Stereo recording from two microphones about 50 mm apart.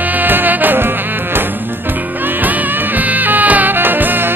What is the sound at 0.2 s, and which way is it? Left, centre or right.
Music, right.